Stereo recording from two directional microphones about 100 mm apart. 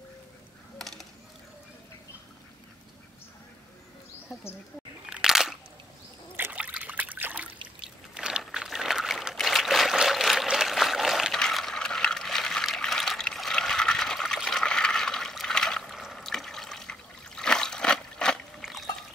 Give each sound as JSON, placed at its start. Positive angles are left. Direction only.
{"t": 0.7, "sound": "coin", "side_deg": 5}
{"t": 5.0, "sound": "crunch", "side_deg": -5}
{"t": 6.3, "sound": "trickle", "side_deg": -15}
{"t": 7.6, "sound": "boat", "side_deg": -10}
{"t": 8.5, "sound": "pour", "side_deg": -5}
{"t": 18.6, "sound": "a sound", "side_deg": 0}